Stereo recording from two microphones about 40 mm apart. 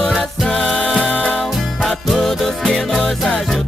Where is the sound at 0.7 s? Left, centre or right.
Left.